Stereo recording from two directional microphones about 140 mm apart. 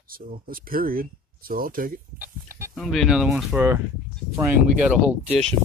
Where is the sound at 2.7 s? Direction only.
Centre (ahead or behind).